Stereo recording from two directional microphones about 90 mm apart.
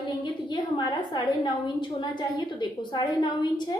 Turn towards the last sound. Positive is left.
turn(degrees=55)  # may be behind; listen again after turning